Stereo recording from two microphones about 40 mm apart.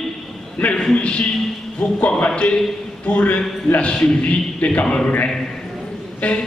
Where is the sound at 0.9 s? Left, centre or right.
Left.